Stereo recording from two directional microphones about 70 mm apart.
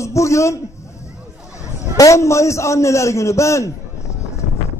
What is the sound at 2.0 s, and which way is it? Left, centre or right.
A man's voice, left.